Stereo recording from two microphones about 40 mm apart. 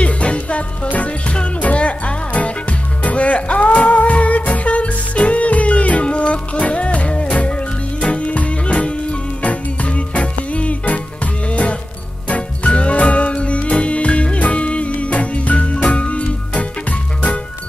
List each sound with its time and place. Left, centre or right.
0.0 s music: left
12.3 s music: left